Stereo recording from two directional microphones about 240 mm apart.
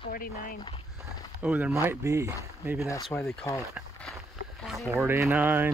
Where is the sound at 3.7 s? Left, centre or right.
Centre.